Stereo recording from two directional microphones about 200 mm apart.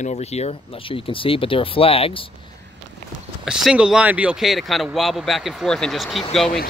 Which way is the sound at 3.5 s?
5° right (ahead or behind).